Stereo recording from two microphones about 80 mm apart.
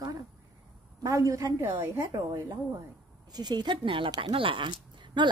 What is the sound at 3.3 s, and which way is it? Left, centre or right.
A woman's voice, right.